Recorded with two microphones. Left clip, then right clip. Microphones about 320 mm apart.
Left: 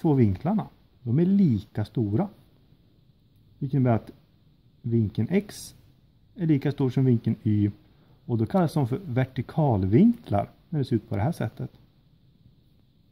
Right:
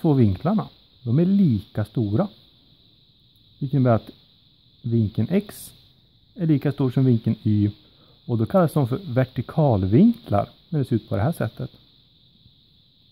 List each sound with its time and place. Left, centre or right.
0.0 s speech: right
3.6 s speech: right